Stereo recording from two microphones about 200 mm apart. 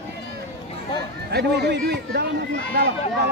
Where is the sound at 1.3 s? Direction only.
55° right (ahead or behind).